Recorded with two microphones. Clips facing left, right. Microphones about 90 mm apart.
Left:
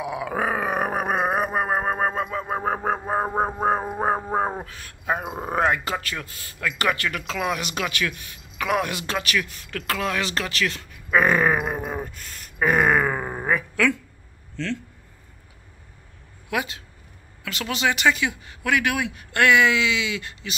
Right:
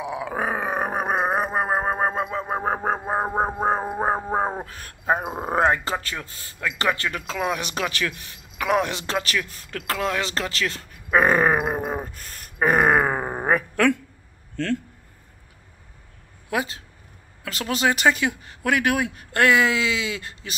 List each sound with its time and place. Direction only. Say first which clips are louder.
0.3 s a sound: left 2 dB; 20° right (ahead or behind)
3.0 s a sound: even; 15° right (ahead or behind)
4.6 s a man's voice: right 3 dB; 40° right (ahead or behind)
5.1 s a man's voice: right 2 dB; 25° right (ahead or behind)
7.2 s speech: right 1 dB; 15° right (ahead or behind)
7.5 s speech: right 1 dB; 30° right (ahead or behind)
11.7 s groan: right 2 dB; 35° right (ahead or behind)
13.5 s a sound: right 2 dB; 50° right (ahead or behind)
14.6 s speech: right 3 dB; 50° right (ahead or behind)
16.4 s speech: right 1 dB; 35° right (ahead or behind)